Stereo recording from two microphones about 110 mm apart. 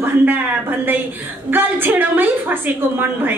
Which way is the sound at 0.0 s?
20° right (ahead or behind).